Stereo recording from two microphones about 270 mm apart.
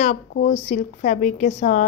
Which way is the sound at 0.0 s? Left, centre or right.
Left.